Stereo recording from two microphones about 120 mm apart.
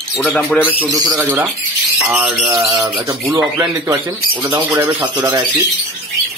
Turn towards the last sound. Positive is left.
turn(degrees=-20)  # may be behind; listen again after turning